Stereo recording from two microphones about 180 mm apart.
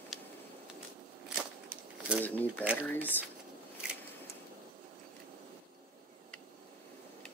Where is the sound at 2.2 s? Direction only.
10° left (ahead or behind).